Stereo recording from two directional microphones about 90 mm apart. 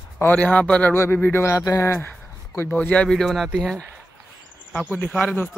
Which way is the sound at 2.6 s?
15° left (ahead or behind).